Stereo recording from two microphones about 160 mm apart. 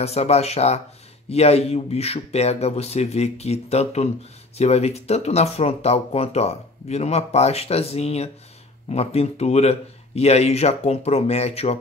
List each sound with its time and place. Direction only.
0.0 s speech: 40° left (ahead or behind)